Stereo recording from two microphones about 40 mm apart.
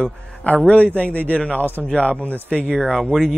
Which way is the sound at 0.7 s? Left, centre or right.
Left.